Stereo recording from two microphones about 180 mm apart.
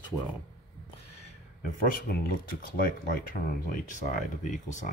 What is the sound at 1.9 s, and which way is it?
Speech, 55° left (ahead or behind).